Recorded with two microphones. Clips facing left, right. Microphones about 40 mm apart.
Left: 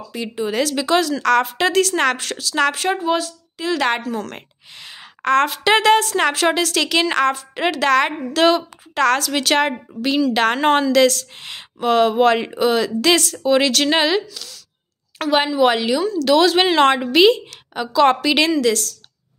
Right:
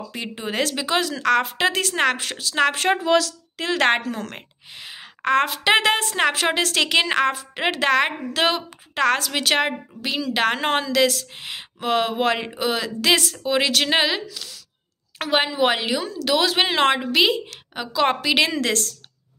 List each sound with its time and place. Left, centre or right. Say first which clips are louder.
0.1 s speech: left 7 dB; right
0.7 s a woman's voice: left 5 dB; centre
2.7 s speech: even; right
3.0 s speech: right 1 dB; right
3.6 s speech: even; right
4.2 s a sound: left 3 dB; centre
5.6 s a woman's voice: left 4 dB; centre
6.1 s a woman's voice: left 3 dB; centre
6.5 s a woman's voice: left 1 dB; right; by 17.0 s centre
17.0 s a woman's voice: left 6 dB; centre
17.7 s a woman's voice: left 6 dB; centre
18.6 s speech: left 5 dB; right